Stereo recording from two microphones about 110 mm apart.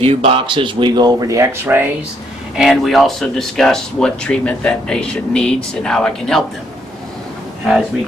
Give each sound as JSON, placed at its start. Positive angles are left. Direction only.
{"t": 0.0, "sound": "speech", "side_deg": -60}
{"t": 1.7, "sound": "speech", "side_deg": -20}
{"t": 2.5, "sound": "speech", "side_deg": 0}